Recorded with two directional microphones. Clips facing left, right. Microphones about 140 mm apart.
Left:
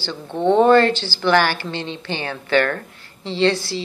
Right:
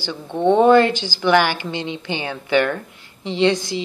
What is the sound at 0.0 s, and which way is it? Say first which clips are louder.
A woman's voice: right 1 dB; 15° right (ahead or behind).